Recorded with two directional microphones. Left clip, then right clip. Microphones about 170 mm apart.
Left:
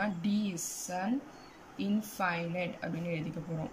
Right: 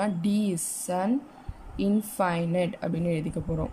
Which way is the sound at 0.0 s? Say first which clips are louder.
Right 6 dB; 30° right (ahead or behind).